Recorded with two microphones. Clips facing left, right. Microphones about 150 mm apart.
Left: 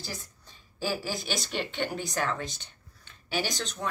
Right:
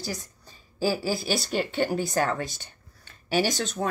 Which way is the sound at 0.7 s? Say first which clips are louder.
Right 6 dB; 35° right (ahead or behind).